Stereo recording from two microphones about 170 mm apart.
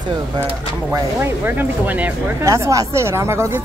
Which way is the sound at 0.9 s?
15° right (ahead or behind).